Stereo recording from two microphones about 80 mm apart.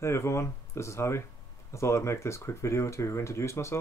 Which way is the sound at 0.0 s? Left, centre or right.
Left.